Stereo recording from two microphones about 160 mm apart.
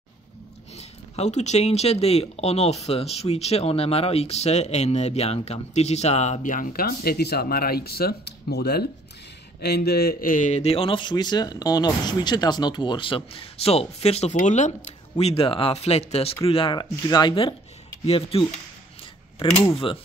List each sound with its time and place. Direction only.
0.7 s a man's voice: 45° left (ahead or behind)
19.6 s a man's voice: 35° left (ahead or behind)